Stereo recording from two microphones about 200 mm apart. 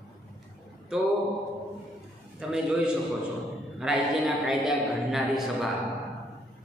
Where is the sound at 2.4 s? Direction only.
5° right (ahead or behind).